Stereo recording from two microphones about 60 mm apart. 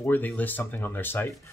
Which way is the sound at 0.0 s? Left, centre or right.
Left.